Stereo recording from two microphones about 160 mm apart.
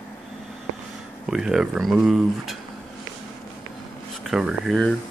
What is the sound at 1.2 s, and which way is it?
Speech, 5° right (ahead or behind).